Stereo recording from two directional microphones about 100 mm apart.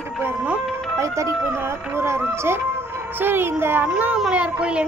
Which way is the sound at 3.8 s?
15° right (ahead or behind).